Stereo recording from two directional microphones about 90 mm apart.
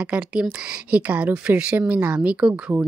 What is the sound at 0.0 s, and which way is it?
A woman's voice, 10° right (ahead or behind).